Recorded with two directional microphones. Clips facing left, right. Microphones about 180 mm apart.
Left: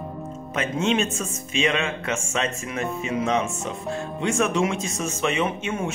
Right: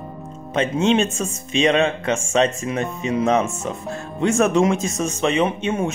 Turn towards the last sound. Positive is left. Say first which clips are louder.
# right 5 dB
turn(degrees=-35)  # may be behind; listen again after turning